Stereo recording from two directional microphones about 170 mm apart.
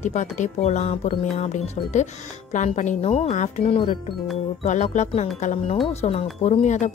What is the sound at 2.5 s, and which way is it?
Speech, 45° left (ahead or behind).